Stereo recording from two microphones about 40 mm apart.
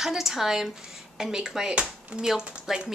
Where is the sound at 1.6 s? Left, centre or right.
Right.